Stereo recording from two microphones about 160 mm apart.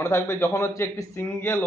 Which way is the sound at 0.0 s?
15° left (ahead or behind).